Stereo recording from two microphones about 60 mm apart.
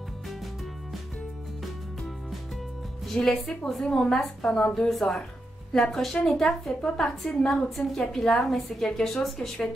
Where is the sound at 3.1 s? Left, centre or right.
Centre.